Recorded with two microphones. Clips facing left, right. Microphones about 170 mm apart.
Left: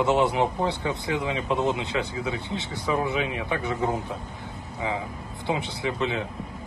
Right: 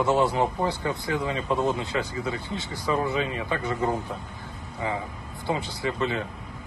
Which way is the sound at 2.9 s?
10° left (ahead or behind).